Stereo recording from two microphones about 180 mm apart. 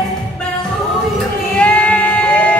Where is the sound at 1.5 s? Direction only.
5° left (ahead or behind).